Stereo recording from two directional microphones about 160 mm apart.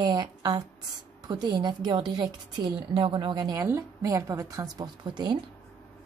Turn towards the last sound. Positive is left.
turn(degrees=-30)  # may be behind; listen again after turning